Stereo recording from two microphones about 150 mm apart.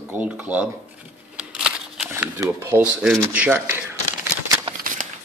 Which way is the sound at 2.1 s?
15° right (ahead or behind).